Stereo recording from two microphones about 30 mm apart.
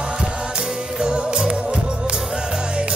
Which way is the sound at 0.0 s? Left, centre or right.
Right.